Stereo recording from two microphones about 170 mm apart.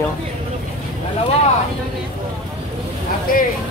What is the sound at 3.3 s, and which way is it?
Speech, 55° left (ahead or behind).